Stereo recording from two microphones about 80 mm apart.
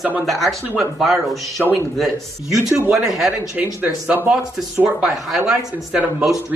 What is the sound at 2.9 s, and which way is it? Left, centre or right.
Speech, centre.